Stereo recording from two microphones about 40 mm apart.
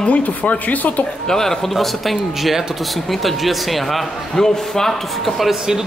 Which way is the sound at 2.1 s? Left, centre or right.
Centre.